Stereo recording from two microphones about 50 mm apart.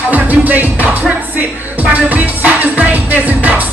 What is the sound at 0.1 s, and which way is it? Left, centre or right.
Music, right.